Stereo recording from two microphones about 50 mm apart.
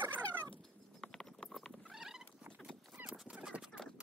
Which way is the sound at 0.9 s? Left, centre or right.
Centre.